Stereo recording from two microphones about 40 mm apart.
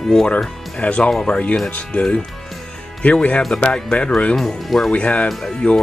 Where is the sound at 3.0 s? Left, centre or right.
Left.